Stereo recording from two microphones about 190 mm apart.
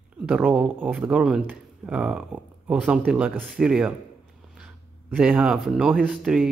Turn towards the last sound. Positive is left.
turn(degrees=-5)  # may be behind; listen again after turning